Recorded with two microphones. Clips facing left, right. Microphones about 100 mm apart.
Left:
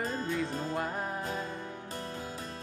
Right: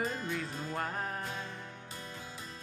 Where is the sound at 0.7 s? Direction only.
5° left (ahead or behind).